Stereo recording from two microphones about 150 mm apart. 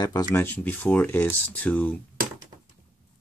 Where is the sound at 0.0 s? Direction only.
25° left (ahead or behind).